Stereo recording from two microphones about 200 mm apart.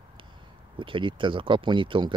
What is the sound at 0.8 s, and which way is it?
Speech, 25° right (ahead or behind).